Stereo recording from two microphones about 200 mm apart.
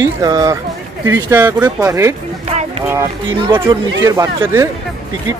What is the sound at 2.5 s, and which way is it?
Music, 35° right (ahead or behind).